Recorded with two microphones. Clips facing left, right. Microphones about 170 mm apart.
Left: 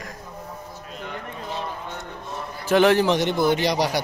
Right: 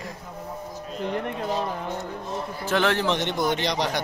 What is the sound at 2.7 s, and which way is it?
A man's voice, 10° left (ahead or behind).